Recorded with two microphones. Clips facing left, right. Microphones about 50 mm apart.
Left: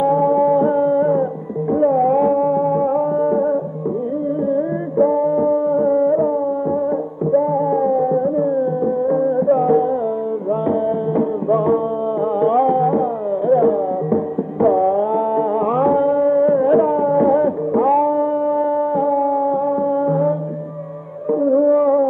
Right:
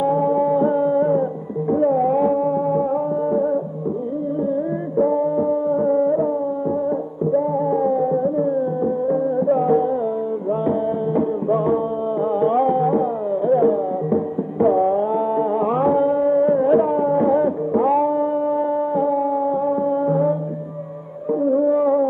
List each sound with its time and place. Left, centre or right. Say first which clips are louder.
0.0 s music: left 3 dB; left
11.1 s music: left 2 dB; left
21.3 s music: left 3 dB; left